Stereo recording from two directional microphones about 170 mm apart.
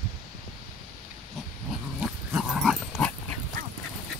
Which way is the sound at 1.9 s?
Centre (ahead or behind).